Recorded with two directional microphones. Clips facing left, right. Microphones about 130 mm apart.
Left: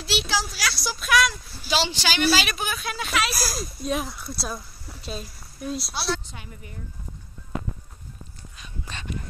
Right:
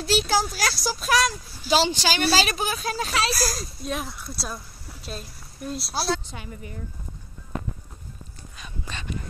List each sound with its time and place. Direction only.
0.0 s a woman's voice: 45° right (ahead or behind)
3.3 s speech: 5° left (ahead or behind)